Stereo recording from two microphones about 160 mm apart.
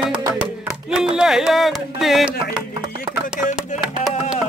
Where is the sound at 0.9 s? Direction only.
5° right (ahead or behind).